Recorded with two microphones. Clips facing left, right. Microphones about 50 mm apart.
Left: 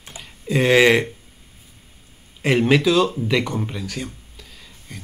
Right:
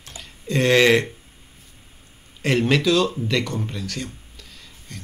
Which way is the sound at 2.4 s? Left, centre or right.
Centre.